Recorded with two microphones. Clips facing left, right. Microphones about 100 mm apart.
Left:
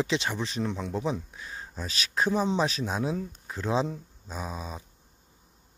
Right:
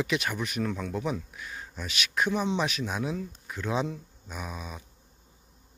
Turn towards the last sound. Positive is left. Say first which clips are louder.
# left 2 dB
turn(degrees=30)  # may be behind; listen again after turning